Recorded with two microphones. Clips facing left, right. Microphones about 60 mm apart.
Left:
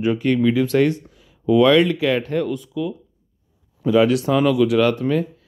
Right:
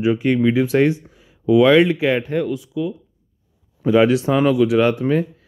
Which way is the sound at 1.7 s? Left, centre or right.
Right.